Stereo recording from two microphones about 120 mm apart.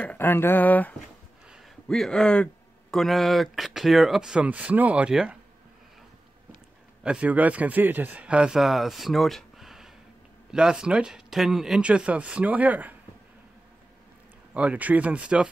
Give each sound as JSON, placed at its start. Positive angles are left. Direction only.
{"t": 0.0, "sound": "speech", "side_deg": 15}
{"t": 7.0, "sound": "a man's voice", "side_deg": -10}
{"t": 14.5, "sound": "a man's voice", "side_deg": -10}